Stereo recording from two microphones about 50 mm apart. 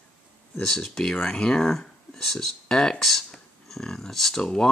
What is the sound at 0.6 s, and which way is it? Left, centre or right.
Speech, centre.